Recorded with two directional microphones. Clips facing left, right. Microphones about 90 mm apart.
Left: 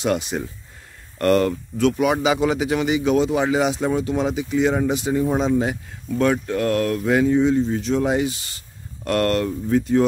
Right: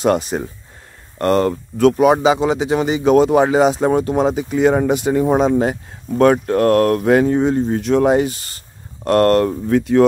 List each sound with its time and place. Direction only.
0.0 s speech: 40° right (ahead or behind)
1.1 s speech: 30° right (ahead or behind); by 9.6 s 45° right (ahead or behind)
9.7 s speech: 75° right (ahead or behind)